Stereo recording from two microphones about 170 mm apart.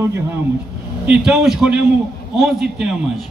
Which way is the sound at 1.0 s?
5° right (ahead or behind).